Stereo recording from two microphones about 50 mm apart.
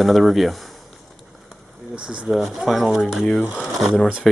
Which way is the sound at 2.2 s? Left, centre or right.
Centre.